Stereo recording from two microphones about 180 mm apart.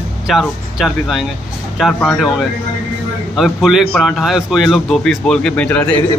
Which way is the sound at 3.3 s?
Centre (ahead or behind).